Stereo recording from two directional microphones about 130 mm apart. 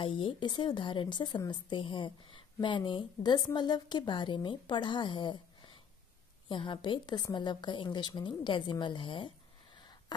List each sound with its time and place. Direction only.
0.0 s speech: 40° left (ahead or behind)